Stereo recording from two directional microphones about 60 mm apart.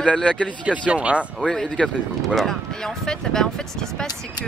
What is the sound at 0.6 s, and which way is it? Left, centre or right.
Speech, right.